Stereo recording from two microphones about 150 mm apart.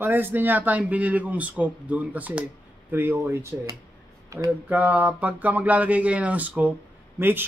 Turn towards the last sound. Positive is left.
turn(degrees=-15)  # may be behind; listen again after turning